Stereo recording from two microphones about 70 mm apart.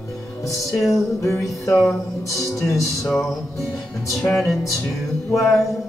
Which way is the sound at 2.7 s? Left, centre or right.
Left.